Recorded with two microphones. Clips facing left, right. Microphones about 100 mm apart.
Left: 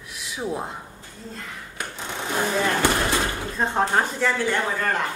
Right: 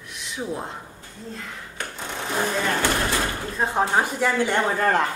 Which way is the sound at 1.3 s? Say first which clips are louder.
Right 1 dB; 5° left (ahead or behind).